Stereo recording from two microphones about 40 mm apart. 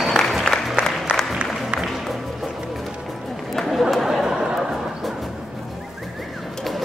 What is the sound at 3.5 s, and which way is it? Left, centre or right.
Chatter, centre.